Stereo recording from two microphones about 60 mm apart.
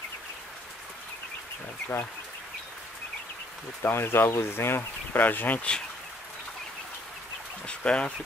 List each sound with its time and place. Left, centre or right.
3.8 s speech: left
5.6 s speech: centre
7.6 s speech: centre